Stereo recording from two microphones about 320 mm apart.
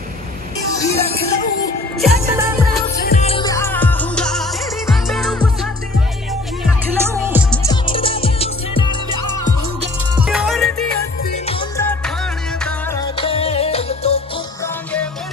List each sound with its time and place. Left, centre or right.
0.7 s music: centre
2.0 s music: centre
3.1 s music: centre
7.5 s music: centre
8.8 s music: left
10.2 s music: centre